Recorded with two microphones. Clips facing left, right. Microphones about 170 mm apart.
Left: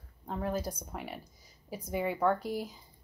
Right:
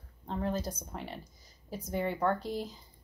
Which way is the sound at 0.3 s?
10° left (ahead or behind).